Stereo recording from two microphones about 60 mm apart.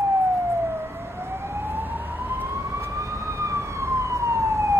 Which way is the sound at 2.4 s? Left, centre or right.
Right.